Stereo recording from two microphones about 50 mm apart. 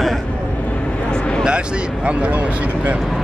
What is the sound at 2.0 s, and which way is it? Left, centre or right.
Speech, right.